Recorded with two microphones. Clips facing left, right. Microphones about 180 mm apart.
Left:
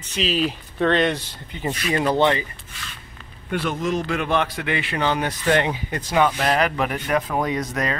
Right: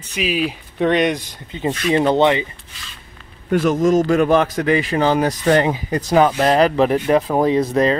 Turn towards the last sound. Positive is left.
turn(degrees=-30)  # may be behind; listen again after turning